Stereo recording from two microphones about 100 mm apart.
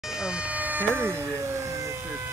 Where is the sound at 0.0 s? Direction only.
5° right (ahead or behind).